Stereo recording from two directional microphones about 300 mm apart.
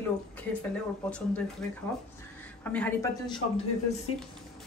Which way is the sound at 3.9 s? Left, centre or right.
Left.